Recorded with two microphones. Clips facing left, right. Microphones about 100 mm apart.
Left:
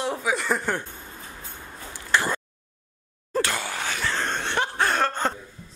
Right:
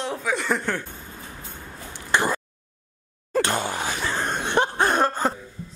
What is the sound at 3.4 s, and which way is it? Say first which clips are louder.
Snicker: right 4 dB; 25° right (ahead or behind).